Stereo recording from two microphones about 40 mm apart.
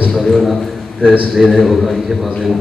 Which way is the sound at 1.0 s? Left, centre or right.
Right.